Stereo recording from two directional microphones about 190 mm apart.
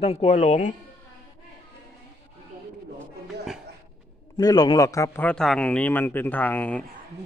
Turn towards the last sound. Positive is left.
turn(degrees=10)  # may be behind; listen again after turning